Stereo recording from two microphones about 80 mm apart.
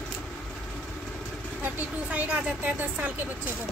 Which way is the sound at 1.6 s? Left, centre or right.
Centre.